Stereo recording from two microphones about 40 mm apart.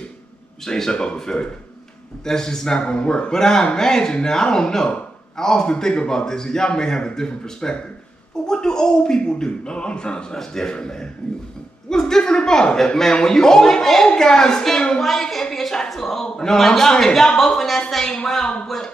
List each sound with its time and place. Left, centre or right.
0.7 s speech: centre
2.8 s speech: left